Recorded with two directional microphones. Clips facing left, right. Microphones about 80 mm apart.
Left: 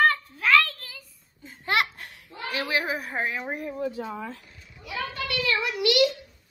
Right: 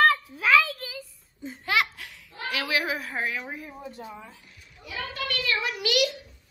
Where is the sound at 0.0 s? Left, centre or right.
Centre.